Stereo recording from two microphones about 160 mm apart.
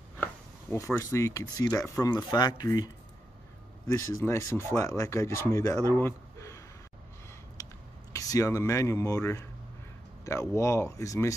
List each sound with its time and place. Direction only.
0.2 s speech: 15° left (ahead or behind)
3.9 s speech: 20° left (ahead or behind)
5.9 s a sound: 20° left (ahead or behind)
8.1 s speech: 20° left (ahead or behind)